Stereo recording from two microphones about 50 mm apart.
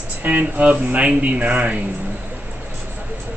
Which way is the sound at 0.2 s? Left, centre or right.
Right.